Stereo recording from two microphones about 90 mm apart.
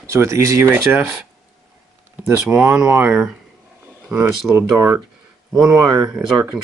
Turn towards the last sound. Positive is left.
turn(degrees=-5)  # may be behind; listen again after turning